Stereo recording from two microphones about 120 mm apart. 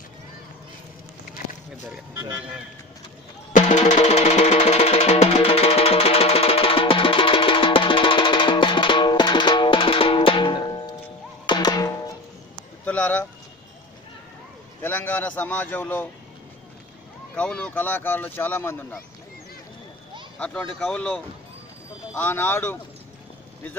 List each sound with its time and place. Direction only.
3.5 s music: 80° left; by 11.9 s 35° left (ahead or behind)
12.8 s a sound: 10° left (ahead or behind)
14.8 s a man's voice: 15° left (ahead or behind)
17.4 s speech: 10° left (ahead or behind)
20.3 s speech: 10° left (ahead or behind)